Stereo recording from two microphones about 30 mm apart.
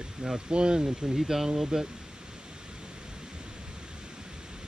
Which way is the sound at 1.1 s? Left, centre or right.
Centre.